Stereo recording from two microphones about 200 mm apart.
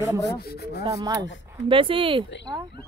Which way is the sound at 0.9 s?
15° right (ahead or behind).